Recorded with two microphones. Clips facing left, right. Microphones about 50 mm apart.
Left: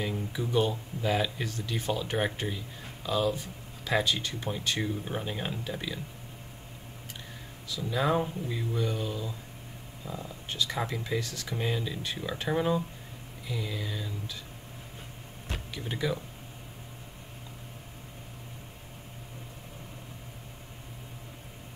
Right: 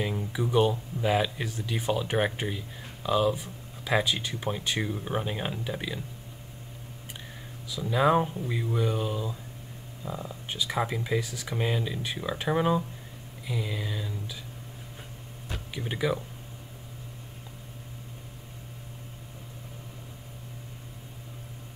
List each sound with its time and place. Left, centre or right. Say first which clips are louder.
0.0 s speech: right 3 dB; centre
7.6 s speech: right 5 dB; centre
15.7 s speech: right 3 dB; centre